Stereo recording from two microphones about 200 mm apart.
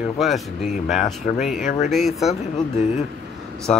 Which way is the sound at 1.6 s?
40° left (ahead or behind).